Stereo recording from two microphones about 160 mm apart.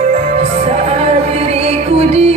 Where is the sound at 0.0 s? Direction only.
40° right (ahead or behind).